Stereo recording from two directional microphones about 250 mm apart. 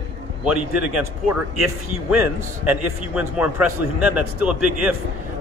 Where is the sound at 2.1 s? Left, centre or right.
Centre.